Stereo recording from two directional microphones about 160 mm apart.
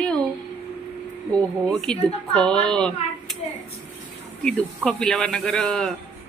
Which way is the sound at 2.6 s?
5° left (ahead or behind).